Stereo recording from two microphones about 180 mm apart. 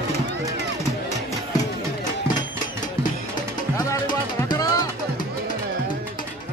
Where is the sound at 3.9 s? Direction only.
20° left (ahead or behind).